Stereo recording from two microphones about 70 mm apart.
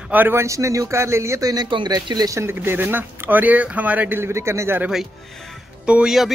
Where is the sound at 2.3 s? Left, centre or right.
Right.